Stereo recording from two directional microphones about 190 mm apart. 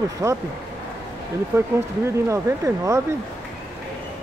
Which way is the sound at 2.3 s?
15° right (ahead or behind).